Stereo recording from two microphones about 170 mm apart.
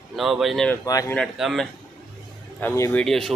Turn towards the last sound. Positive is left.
turn(degrees=0)  # may be behind; listen again after turning